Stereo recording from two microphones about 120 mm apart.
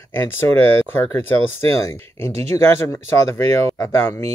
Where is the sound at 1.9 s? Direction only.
25° left (ahead or behind).